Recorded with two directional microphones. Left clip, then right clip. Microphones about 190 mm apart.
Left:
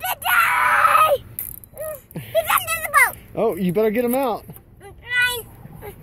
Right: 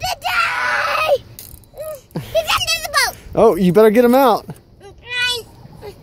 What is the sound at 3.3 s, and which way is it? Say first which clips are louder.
Speech: right 9 dB; 40° right (ahead or behind).